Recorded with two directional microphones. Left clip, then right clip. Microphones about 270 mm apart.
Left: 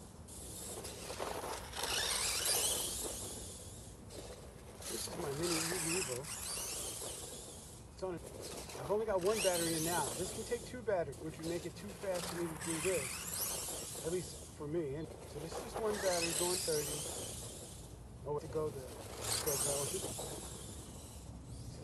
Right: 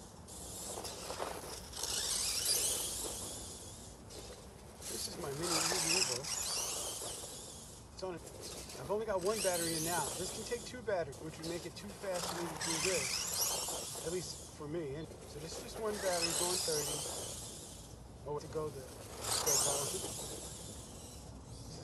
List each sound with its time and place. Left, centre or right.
1.0 s a sound: centre
4.9 s zipper: centre
5.5 s a sound: centre
8.0 s speech: centre
12.4 s speech: right
14.7 s speech: centre
18.3 s speech: centre
19.1 s vehicle: centre
19.4 s speech: right